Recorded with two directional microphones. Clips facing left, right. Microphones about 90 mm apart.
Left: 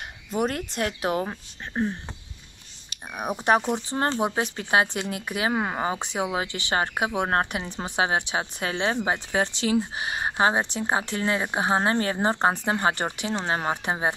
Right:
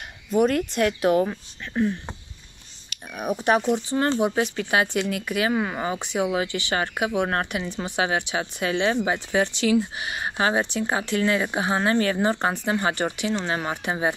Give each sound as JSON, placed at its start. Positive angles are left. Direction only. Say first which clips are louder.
{"t": 0.7, "sound": "speech", "louder": "right 6 dB", "side_deg": 30}
{"t": 3.1, "sound": "speech", "louder": "right 1 dB", "side_deg": 30}